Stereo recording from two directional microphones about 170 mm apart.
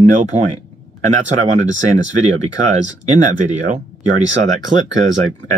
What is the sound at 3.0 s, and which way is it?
Speech, 45° right (ahead or behind).